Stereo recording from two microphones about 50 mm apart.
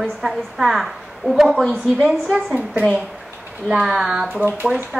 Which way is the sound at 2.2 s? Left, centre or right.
Centre.